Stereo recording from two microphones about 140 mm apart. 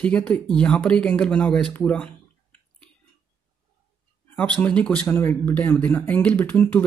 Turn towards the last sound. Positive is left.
turn(degrees=10)  # may be behind; listen again after turning